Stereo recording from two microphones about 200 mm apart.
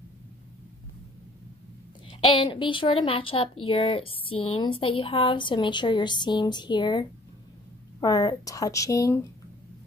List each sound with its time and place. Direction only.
2.0 s speech: 25° left (ahead or behind)